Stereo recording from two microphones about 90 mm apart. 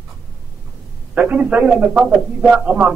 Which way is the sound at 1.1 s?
15° right (ahead or behind).